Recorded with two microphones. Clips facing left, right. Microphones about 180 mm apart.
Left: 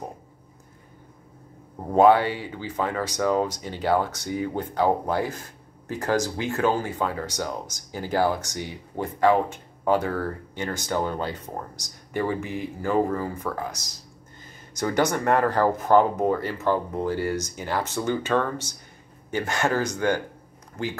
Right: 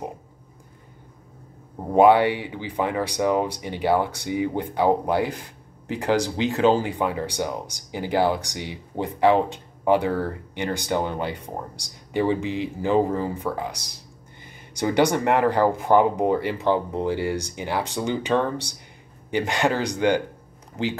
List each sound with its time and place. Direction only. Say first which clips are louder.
2.0 s speech: right 2 dB; 20° right (ahead or behind)
14.8 s speech: right 3 dB; 15° right (ahead or behind)